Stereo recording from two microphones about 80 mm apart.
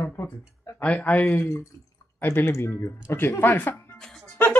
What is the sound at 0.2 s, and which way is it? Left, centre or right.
Speech, left.